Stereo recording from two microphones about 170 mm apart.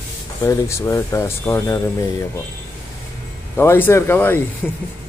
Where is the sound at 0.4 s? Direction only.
15° left (ahead or behind).